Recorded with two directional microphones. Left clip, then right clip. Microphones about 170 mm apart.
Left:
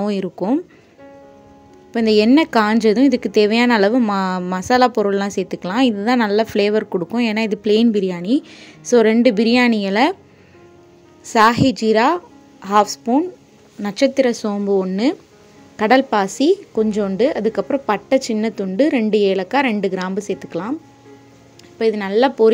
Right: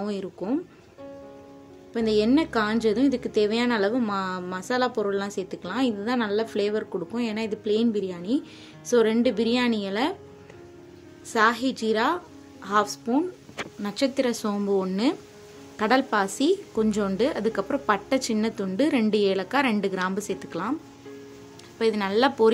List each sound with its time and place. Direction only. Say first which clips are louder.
0.0 s a woman's voice: left 10 dB; 45° left (ahead or behind)
1.9 s a woman's voice: left 8 dB; 50° left (ahead or behind)
11.2 s a woman's voice: left 9 dB; 45° left (ahead or behind); by 20.7 s 25° left (ahead or behind)
21.7 s a woman's voice: left 7 dB; 25° left (ahead or behind)